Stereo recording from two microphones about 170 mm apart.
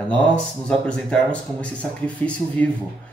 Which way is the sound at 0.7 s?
5° left (ahead or behind).